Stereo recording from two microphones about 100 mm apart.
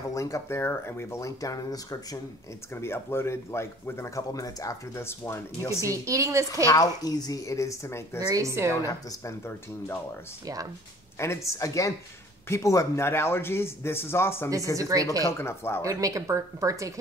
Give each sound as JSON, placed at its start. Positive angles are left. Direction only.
{"t": 0.1, "sound": "speech", "side_deg": 35}
{"t": 2.7, "sound": "speech", "side_deg": 25}
{"t": 6.0, "sound": "speech", "side_deg": -30}
{"t": 6.5, "sound": "speech", "side_deg": 40}
{"t": 8.2, "sound": "speech", "side_deg": -35}
{"t": 8.8, "sound": "speech", "side_deg": 30}
{"t": 10.4, "sound": "speech", "side_deg": -35}
{"t": 11.1, "sound": "speech", "side_deg": 30}
{"t": 14.8, "sound": "speech", "side_deg": -35}
{"t": 15.2, "sound": "speech", "side_deg": 25}
{"t": 15.8, "sound": "speech", "side_deg": -35}